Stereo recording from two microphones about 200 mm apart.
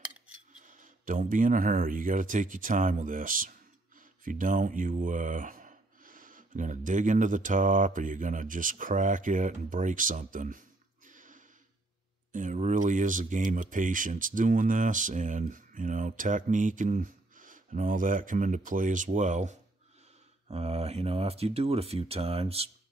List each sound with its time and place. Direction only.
0.6 s speech: 40° right (ahead or behind)
11.1 s a sound: 40° right (ahead or behind)
12.3 s speech: 40° right (ahead or behind)